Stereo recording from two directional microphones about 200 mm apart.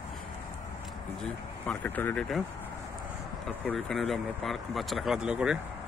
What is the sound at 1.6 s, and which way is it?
Speech, 10° left (ahead or behind).